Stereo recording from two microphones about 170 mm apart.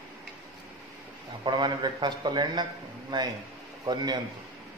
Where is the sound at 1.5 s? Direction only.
25° right (ahead or behind).